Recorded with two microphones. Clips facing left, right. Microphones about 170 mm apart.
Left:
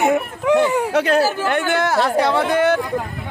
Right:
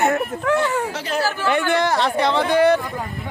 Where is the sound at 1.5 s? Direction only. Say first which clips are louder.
Even; 5° left (ahead or behind).